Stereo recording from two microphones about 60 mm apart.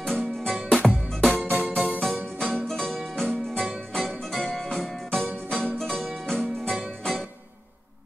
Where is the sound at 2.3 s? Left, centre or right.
Centre.